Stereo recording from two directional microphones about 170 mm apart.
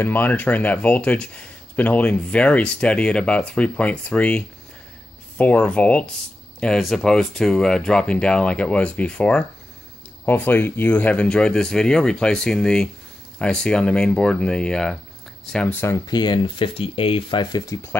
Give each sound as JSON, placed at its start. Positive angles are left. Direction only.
{"t": 0.0, "sound": "speech", "side_deg": 10}
{"t": 16.1, "sound": "speech", "side_deg": 25}